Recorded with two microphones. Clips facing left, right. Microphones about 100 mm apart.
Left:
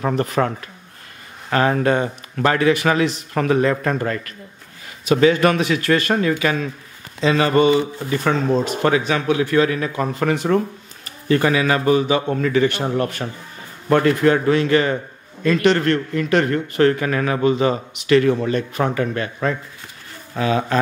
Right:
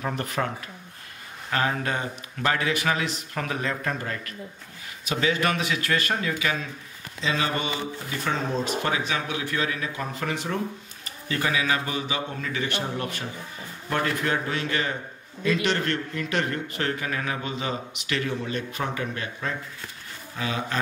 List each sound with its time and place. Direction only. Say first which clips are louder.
0.0 s speech: left 9 dB; 80° left
1.5 s speech: left 9 dB; 55° left (ahead or behind)